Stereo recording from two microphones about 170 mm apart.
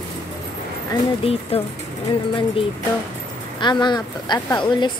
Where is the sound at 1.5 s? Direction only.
35° left (ahead or behind).